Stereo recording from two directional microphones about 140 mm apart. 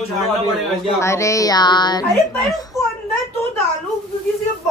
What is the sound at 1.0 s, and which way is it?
Speech, 20° left (ahead or behind).